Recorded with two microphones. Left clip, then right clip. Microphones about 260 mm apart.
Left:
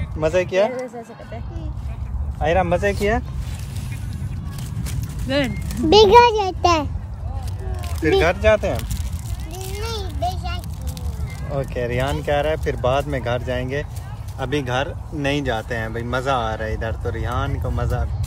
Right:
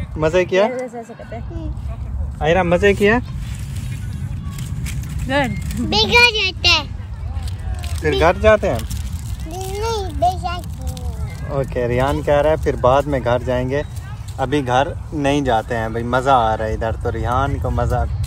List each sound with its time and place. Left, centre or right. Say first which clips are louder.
0.2 s speech: right 3 dB; right
2.4 s speech: right 4 dB; right
5.3 s speech: right 3 dB; right
6.0 s a child's voice: even; left
6.3 s a child's voice: right 2 dB; left
8.2 s speech: right 7 dB; centre
8.5 s speech: right 4 dB; right
9.5 s a sound: right 7 dB; centre
11.5 s speech: right 4 dB; right
14.4 s speech: right 6 dB; centre